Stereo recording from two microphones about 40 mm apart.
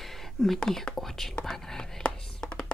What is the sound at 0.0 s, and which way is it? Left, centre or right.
Whispering, centre.